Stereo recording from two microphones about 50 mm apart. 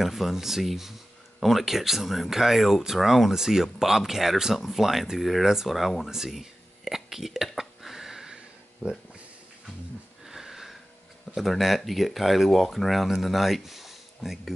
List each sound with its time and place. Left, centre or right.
0.0 s speech: centre
8.8 s speech: right
10.2 s sniff: centre
11.3 s speech: centre